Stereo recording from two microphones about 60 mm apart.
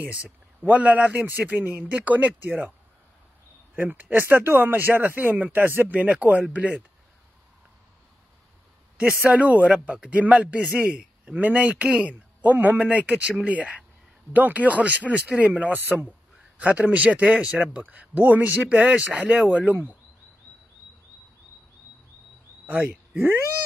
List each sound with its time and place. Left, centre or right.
0.0 s speech: centre
3.7 s speech: right
5.9 s speech: right
8.9 s a man's voice: right